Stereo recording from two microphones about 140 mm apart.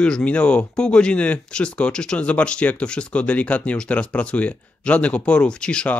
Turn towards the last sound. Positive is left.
turn(degrees=5)  # may be behind; listen again after turning